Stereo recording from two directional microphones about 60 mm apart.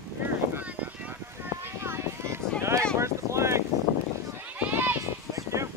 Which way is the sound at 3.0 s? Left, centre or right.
Right.